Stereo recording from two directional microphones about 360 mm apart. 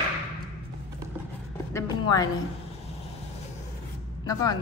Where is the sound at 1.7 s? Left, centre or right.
Centre.